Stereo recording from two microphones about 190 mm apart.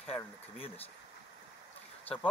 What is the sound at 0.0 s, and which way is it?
Speech, 30° left (ahead or behind).